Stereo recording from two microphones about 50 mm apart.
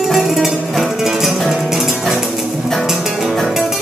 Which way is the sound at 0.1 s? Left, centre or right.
Centre.